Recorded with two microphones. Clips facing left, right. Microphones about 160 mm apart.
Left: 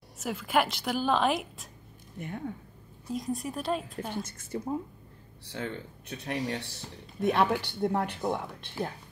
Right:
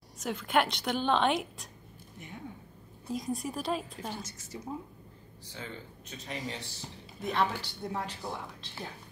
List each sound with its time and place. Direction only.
0.2 s a woman's voice: 5° left (ahead or behind)
2.1 s speech: 55° left (ahead or behind)
3.1 s a woman's voice: centre (ahead or behind)
4.2 s speech: 55° left (ahead or behind)